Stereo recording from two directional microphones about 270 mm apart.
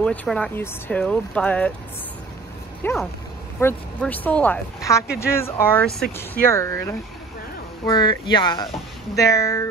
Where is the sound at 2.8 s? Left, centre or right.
Centre.